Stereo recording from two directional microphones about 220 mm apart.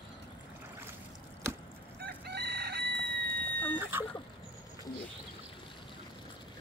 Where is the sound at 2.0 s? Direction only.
50° right (ahead or behind).